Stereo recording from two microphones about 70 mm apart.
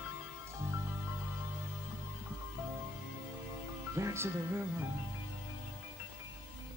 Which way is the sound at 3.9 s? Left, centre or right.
Right.